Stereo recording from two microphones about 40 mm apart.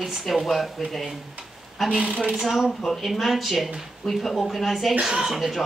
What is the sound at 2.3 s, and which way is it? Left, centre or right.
Speech, centre.